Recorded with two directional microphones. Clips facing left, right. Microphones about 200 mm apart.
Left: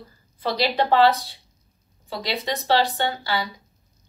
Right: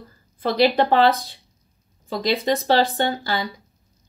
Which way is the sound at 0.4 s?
50° right (ahead or behind).